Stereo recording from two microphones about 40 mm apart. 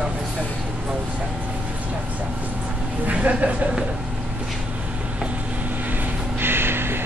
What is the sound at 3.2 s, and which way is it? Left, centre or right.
Speech, right.